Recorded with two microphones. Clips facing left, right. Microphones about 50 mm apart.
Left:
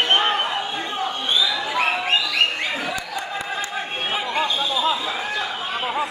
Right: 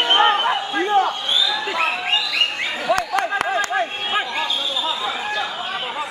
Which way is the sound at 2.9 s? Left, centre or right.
Right.